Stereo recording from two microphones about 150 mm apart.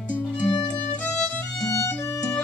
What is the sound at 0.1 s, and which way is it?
Music, 10° left (ahead or behind).